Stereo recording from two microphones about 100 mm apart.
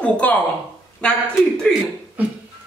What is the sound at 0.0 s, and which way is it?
Speech, 15° left (ahead or behind).